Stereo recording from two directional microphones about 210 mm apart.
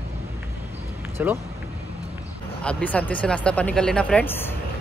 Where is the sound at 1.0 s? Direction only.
10° right (ahead or behind).